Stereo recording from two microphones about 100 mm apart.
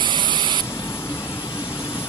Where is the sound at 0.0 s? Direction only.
55° right (ahead or behind).